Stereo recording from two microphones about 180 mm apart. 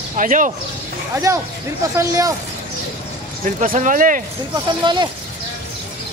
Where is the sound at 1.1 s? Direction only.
20° right (ahead or behind).